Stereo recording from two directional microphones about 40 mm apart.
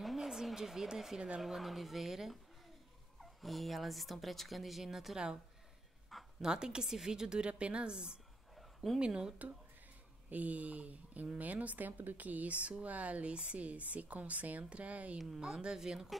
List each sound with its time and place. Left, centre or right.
0.0 s a sound: centre
1.4 s speech: centre
5.1 s a woman's voice: centre
6.1 s a sound: centre
6.4 s a woman's voice: centre
8.5 s dog: centre
9.0 s a woman's voice: right
10.3 s a woman's voice: right
15.1 s speech: centre